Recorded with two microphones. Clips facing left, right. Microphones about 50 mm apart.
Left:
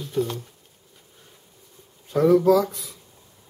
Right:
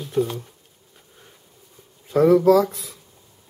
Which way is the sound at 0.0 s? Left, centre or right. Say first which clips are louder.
Right 3 dB; centre.